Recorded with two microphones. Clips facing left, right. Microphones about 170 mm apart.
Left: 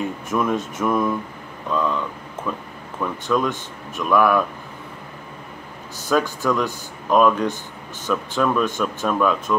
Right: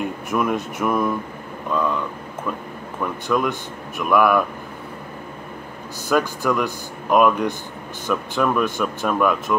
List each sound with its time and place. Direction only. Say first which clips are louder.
0.3 s speech: even; 10° right (ahead or behind)
3.0 s speech: even; 10° right (ahead or behind)
6.0 s speech: even; 10° right (ahead or behind)